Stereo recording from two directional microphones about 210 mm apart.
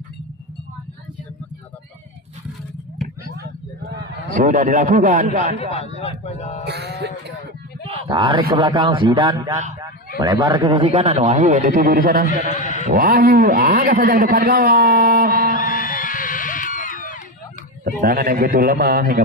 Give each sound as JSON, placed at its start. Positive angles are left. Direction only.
{"t": 4.3, "sound": "a man's voice", "side_deg": -40}
{"t": 5.7, "sound": "a man's voice", "side_deg": 30}
{"t": 6.6, "sound": "a sound", "side_deg": -50}
{"t": 7.8, "sound": "a sound", "side_deg": -20}
{"t": 8.5, "sound": "a man's voice", "side_deg": -20}
{"t": 15.6, "sound": "music", "side_deg": 40}
{"t": 17.8, "sound": "a man's voice", "side_deg": -45}